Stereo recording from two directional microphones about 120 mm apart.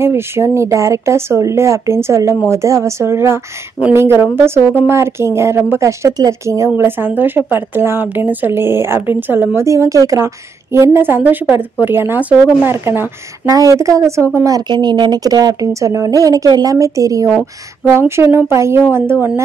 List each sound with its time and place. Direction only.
0.0 s a woman's voice: 20° right (ahead or behind)